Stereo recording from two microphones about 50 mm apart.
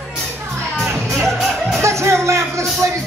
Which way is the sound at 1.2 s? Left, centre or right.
Centre.